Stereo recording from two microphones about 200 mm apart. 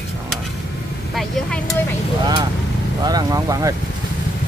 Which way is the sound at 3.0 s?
20° right (ahead or behind).